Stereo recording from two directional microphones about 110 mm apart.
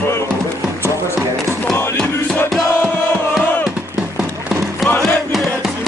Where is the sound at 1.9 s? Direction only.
20° left (ahead or behind).